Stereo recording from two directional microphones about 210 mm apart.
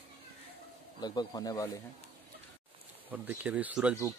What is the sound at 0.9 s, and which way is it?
Speech, 20° left (ahead or behind).